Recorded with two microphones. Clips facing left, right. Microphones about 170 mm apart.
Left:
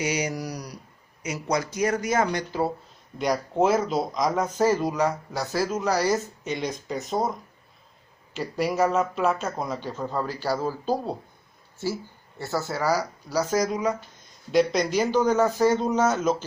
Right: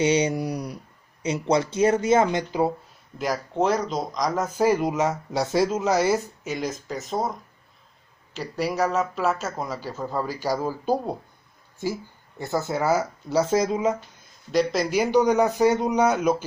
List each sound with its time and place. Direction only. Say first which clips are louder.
0.0 s a sound: right 6 dB; 30° right (ahead or behind)
1.2 s speech: right 5 dB; 30° right (ahead or behind)
3.2 s speech: left 2 dB; centre (ahead or behind); by 6.2 s 20° right (ahead or behind)
6.4 s speech: even; 5° right (ahead or behind); by 14.0 s 25° right (ahead or behind)
14.5 s speech: left 1 dB; centre (ahead or behind)